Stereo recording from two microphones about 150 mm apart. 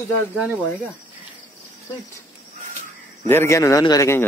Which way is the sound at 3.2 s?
15° left (ahead or behind).